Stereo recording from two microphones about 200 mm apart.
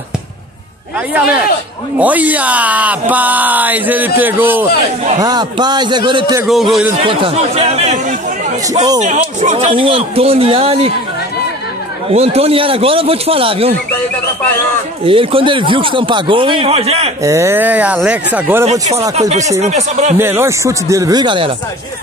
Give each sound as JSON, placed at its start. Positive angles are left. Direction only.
{"t": 2.0, "sound": "speech", "side_deg": -10}
{"t": 5.2, "sound": "speech", "side_deg": -20}
{"t": 6.4, "sound": "speech", "side_deg": 0}
{"t": 7.0, "sound": "speech", "side_deg": -30}
{"t": 12.1, "sound": "speech", "side_deg": -30}
{"t": 15.0, "sound": "speech", "side_deg": -25}
{"t": 17.2, "sound": "speech", "side_deg": -15}
{"t": 18.7, "sound": "speech", "side_deg": -30}
{"t": 20.2, "sound": "speech", "side_deg": -10}